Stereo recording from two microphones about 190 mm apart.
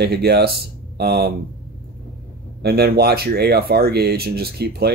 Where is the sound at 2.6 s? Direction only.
55° right (ahead or behind).